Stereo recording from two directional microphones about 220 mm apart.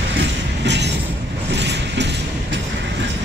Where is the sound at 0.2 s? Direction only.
50° right (ahead or behind).